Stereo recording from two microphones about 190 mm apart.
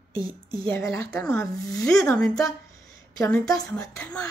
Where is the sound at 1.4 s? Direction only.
20° left (ahead or behind).